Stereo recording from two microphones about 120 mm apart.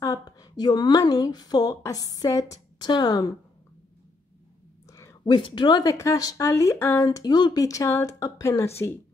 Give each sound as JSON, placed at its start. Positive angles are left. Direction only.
{"t": 0.0, "sound": "a woman's voice", "side_deg": 30}
{"t": 4.8, "sound": "a sound", "side_deg": 25}
{"t": 5.3, "sound": "a woman's voice", "side_deg": 40}